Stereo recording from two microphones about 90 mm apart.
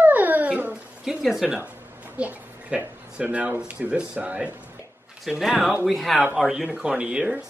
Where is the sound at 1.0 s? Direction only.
5° right (ahead or behind).